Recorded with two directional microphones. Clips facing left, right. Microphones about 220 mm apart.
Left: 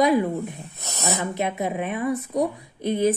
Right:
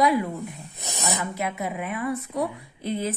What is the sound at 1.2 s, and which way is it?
A woman's voice, 20° left (ahead or behind).